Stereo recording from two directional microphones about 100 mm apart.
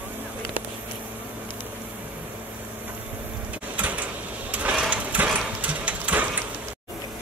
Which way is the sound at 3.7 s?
15° right (ahead or behind).